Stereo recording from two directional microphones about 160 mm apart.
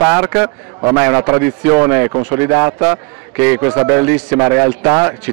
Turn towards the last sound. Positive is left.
turn(degrees=-15)  # may be behind; listen again after turning